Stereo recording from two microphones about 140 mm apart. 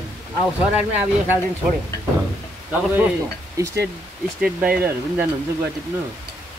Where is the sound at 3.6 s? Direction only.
25° right (ahead or behind).